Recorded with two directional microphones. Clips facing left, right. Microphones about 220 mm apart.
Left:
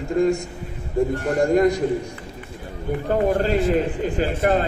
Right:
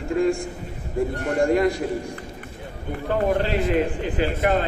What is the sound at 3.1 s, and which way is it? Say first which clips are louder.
A man's voice: left 2 dB; 45° left (ahead or behind).